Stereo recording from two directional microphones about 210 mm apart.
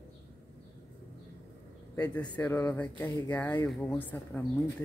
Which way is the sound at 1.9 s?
5° left (ahead or behind).